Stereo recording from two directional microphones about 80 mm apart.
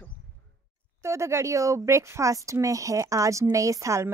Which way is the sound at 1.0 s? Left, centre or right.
Right.